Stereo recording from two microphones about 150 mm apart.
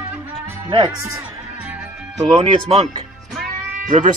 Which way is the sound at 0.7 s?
30° right (ahead or behind).